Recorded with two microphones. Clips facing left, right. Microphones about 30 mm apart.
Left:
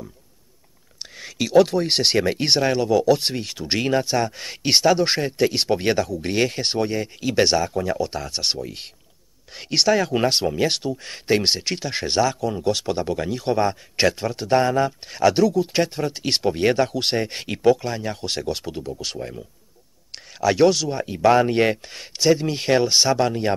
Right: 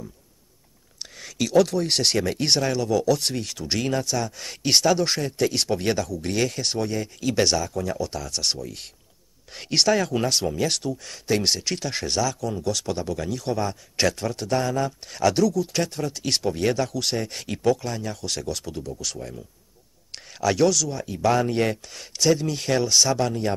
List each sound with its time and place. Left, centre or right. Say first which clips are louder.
1.1 s speech: left 3 dB; centre
9.5 s speech: left 2 dB; centre
10.1 s speech: left 3 dB; left
20.5 s speech: left 4 dB; left